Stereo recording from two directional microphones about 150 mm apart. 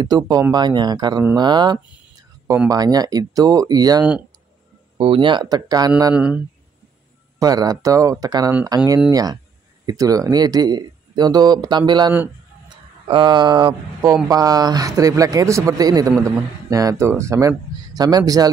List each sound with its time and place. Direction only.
0.0 s speech: 25° right (ahead or behind)
4.9 s speech: 35° right (ahead or behind)
6.1 s speech: 5° right (ahead or behind)
7.3 s speech: 25° right (ahead or behind)